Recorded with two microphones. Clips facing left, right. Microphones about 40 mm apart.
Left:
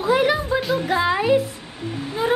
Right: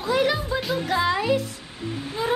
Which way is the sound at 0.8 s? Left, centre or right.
Centre.